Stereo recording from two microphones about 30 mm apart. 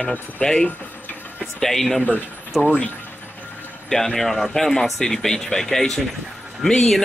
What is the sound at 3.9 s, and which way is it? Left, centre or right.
Speech, centre.